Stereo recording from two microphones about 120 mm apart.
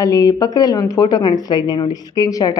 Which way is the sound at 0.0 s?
30° left (ahead or behind).